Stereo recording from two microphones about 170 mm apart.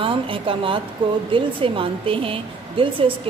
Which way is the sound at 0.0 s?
30° right (ahead or behind).